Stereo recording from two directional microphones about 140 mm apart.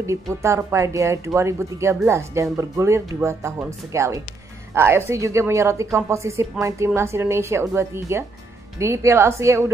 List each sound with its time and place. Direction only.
0.0 s speech: 20° right (ahead or behind)